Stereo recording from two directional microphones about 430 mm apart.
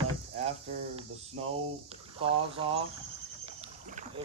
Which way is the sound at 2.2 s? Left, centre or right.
Centre.